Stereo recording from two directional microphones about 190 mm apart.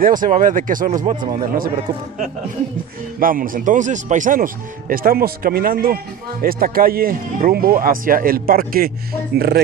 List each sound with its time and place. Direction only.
0.0 s speech: 45° right (ahead or behind)
3.2 s speech: 45° right (ahead or behind)